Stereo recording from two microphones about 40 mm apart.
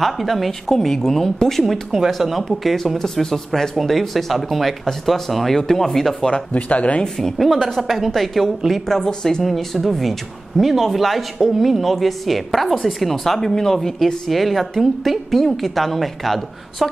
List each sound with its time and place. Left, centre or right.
0.0 s speech: centre
6.3 s speech: left
7.2 s speech: centre
8.8 s speech: centre
9.4 s speech: centre